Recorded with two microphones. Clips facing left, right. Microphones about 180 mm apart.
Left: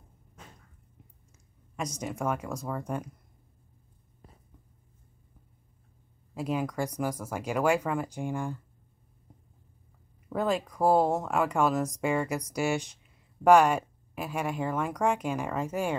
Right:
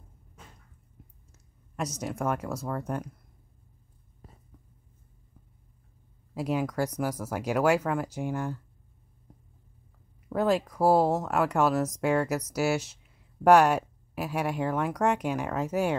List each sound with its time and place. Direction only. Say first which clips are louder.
2.2 s speech: right 1 dB; centre (ahead or behind)
2.5 s speech: right 2 dB; 10° left (ahead or behind)
6.3 s speech: right 2 dB; 10° right (ahead or behind)
10.3 s speech: right 3 dB; 5° right (ahead or behind)